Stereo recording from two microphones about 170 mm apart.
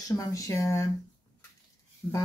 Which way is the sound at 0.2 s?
20° left (ahead or behind).